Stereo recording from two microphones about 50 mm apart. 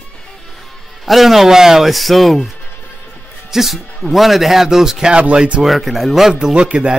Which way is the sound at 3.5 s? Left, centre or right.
Centre.